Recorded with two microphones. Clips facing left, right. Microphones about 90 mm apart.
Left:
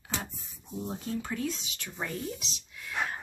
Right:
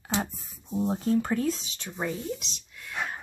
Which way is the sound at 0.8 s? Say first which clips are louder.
Right 9 dB; 40° right (ahead or behind).